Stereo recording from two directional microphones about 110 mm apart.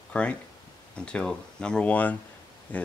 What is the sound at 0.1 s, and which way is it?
Speech, 10° left (ahead or behind).